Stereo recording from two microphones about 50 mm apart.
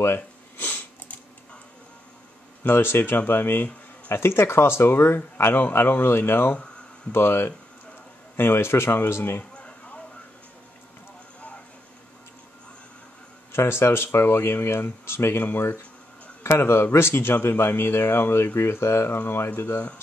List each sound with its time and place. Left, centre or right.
0.6 s sniff: left
1.0 s a sound: left
2.6 s speech: left
9.6 s a sound: left
13.5 s speech: left
16.4 s speech: left
19.5 s speech: left